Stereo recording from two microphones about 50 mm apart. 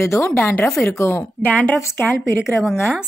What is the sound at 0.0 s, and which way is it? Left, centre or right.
A woman's voice, left.